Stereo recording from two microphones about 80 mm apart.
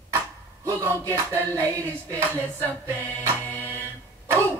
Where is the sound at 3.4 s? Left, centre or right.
Left.